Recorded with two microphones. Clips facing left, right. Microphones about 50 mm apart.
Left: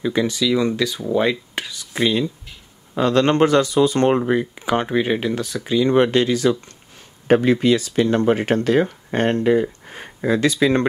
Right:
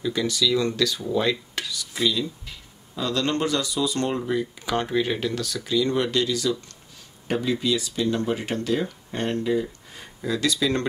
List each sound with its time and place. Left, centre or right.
0.0 s speech: left
1.3 s whispering: left
2.0 s speech: left
4.6 s speech: left
7.2 s speech: left